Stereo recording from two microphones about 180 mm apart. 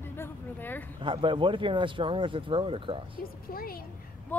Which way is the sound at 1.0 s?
30° right (ahead or behind).